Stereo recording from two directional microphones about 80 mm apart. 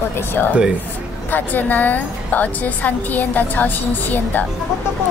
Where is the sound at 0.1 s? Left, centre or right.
Left.